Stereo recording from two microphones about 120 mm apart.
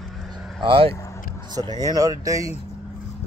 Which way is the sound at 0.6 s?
50° right (ahead or behind).